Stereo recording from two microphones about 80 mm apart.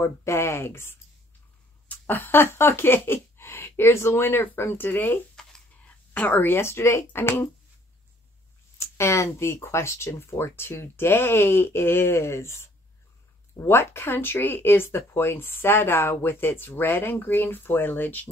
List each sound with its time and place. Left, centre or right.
0.0 s speech: left
5.3 s a sound: centre
6.1 s speech: left
8.7 s speech: left